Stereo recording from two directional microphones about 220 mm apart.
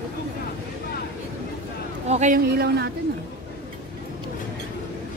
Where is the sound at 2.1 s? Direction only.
35° right (ahead or behind).